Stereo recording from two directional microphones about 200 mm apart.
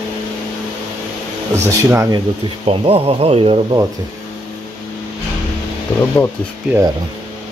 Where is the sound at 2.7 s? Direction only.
30° right (ahead or behind).